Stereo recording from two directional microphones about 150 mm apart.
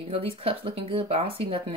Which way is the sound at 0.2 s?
40° right (ahead or behind).